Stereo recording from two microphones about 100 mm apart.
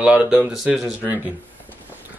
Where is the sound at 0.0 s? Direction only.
10° right (ahead or behind).